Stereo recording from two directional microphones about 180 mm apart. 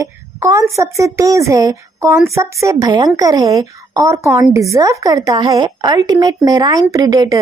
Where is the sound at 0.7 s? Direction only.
15° right (ahead or behind).